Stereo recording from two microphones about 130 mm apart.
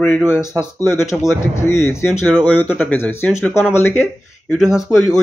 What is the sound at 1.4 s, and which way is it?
Speech, 20° left (ahead or behind).